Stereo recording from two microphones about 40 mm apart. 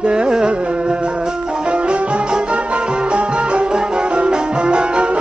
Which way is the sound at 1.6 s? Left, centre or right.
Right.